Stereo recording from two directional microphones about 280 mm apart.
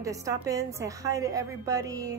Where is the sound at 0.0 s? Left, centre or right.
Centre.